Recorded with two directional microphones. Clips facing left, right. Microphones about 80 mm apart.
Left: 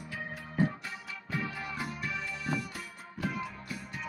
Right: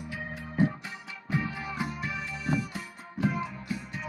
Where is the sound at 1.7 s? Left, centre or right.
Centre.